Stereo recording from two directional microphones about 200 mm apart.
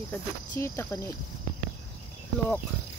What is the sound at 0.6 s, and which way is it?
Cricket, 15° left (ahead or behind).